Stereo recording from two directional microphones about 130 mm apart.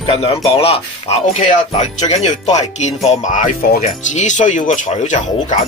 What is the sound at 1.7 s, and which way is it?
Speech, 60° left (ahead or behind).